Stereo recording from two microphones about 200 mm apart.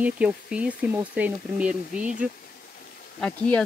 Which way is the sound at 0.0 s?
5° right (ahead or behind).